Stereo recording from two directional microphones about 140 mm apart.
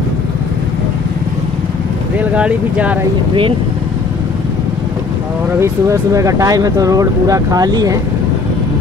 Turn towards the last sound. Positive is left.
turn(degrees=-25)  # may be behind; listen again after turning